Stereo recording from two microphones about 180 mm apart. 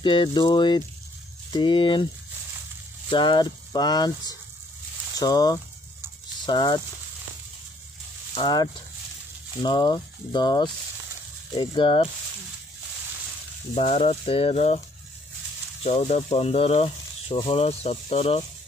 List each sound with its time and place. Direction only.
0.0 s speech: 25° left (ahead or behind)
3.1 s speech: 25° left (ahead or behind)
8.4 s speech: 25° left (ahead or behind)
13.7 s speech: 35° left (ahead or behind)
15.8 s speech: 35° left (ahead or behind)